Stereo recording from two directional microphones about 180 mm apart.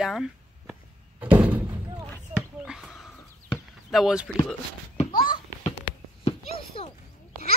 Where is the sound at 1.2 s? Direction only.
10° right (ahead or behind).